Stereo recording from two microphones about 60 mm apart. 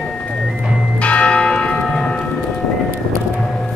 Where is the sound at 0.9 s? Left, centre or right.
Left.